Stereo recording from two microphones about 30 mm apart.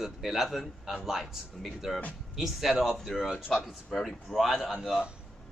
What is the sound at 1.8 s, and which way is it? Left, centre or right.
A man's voice, centre.